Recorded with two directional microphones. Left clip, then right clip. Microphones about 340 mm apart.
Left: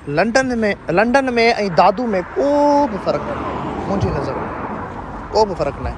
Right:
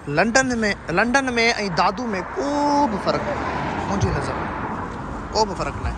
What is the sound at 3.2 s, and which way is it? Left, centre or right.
Speech, right.